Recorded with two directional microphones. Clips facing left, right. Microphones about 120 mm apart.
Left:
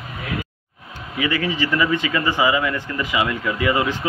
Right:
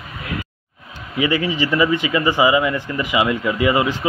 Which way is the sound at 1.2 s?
20° right (ahead or behind).